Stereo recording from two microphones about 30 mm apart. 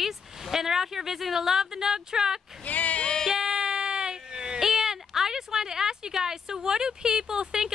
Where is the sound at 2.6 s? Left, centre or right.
Left.